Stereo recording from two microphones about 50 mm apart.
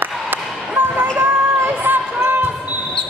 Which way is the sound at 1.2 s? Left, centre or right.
Right.